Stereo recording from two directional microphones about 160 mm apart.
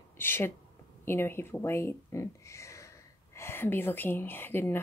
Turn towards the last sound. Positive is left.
turn(degrees=15)  # may be behind; listen again after turning